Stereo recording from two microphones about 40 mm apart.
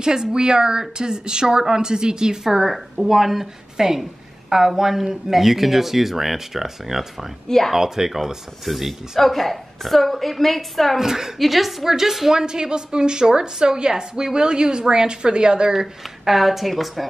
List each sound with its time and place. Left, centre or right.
0.0 s a woman's voice: centre
2.4 s speech: centre
7.4 s speech: centre
7.7 s a woman's voice: centre
11.0 s a woman's voice: centre
12.4 s a woman's voice: centre
16.0 s a woman's voice: centre